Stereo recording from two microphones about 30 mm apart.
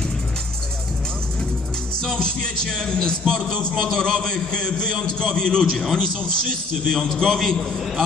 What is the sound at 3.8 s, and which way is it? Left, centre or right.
A man's voice, centre.